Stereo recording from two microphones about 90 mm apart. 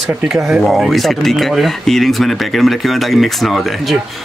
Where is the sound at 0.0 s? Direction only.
5° right (ahead or behind).